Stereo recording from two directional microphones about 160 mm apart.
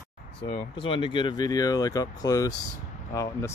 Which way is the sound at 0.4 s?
35° left (ahead or behind).